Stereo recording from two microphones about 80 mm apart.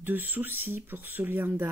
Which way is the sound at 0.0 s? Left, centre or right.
Right.